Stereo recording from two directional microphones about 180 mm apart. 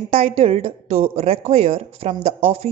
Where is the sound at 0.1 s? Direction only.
30° right (ahead or behind).